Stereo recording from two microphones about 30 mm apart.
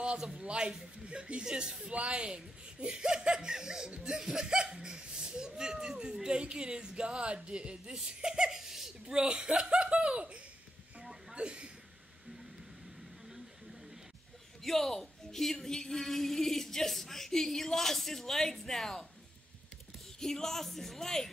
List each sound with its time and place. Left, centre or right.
0.4 s speech: right
7.9 s speech: right
9.1 s speech: right
11.3 s a sound: right
14.6 s speech: centre
20.2 s speech: centre